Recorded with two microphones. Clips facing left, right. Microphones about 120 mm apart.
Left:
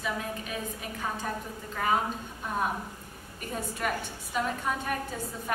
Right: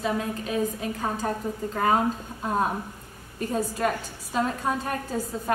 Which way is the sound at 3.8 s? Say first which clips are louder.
Right 5 dB; 35° right (ahead or behind).